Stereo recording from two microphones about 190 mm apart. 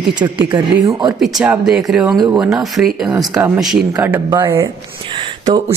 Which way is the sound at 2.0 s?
20° right (ahead or behind).